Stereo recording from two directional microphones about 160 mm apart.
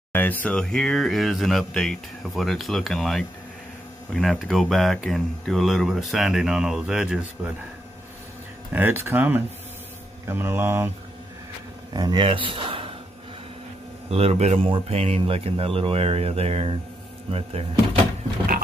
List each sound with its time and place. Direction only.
0.1 s speech: 10° left (ahead or behind); by 7.5 s 5° right (ahead or behind)
8.7 s speech: 10° right (ahead or behind)
11.9 s speech: 25° right (ahead or behind)
14.1 s speech: 40° right (ahead or behind)